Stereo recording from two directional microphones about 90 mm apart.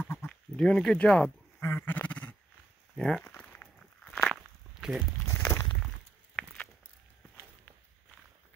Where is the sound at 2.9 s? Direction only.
5° left (ahead or behind).